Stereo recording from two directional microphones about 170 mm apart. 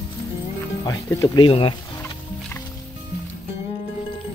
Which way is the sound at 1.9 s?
20° left (ahead or behind).